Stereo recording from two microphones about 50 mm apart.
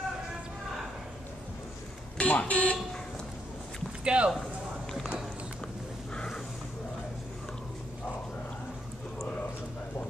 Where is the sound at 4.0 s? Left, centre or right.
Right.